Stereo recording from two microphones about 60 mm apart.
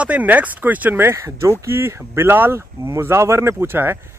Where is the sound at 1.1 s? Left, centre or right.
Right.